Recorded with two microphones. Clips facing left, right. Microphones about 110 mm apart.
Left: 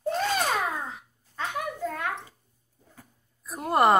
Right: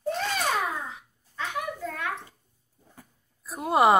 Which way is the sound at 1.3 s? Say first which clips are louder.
Even; 40° left (ahead or behind).